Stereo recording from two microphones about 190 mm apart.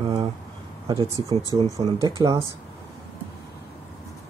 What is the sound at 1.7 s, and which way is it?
Speech, 15° right (ahead or behind).